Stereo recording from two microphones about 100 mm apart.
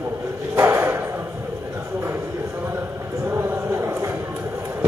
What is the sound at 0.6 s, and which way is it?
Bow-wow, 25° right (ahead or behind).